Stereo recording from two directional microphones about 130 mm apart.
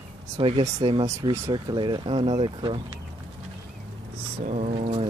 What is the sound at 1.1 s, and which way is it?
Speech, 25° right (ahead or behind).